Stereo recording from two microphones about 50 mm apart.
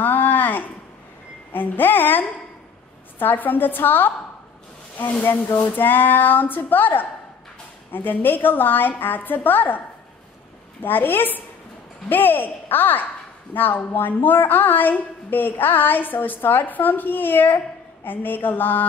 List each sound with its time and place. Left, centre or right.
0.0 s a sound: left
1.5 s a woman's voice: left
5.2 s a woman's voice: left
10.8 s a woman's voice: left